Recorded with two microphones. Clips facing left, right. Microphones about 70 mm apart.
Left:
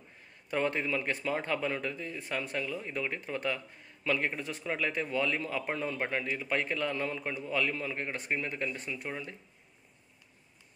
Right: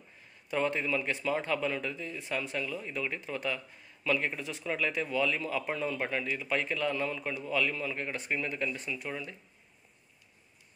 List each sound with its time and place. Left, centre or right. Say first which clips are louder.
0.5 s speech: right 1 dB; left